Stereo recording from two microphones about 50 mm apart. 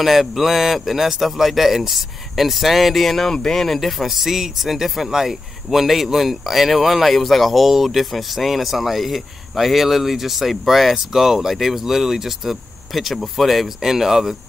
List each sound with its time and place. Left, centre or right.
0.0 s speech: centre